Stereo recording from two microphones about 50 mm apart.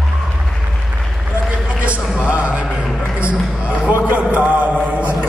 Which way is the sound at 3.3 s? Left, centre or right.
Right.